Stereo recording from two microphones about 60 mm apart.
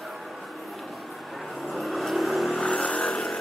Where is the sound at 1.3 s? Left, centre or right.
Centre.